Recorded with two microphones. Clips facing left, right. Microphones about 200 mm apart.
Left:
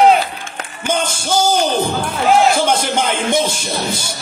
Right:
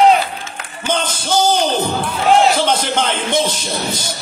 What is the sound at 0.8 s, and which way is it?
Yell, 10° left (ahead or behind).